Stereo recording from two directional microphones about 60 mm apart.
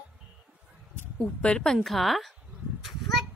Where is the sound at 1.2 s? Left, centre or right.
Centre.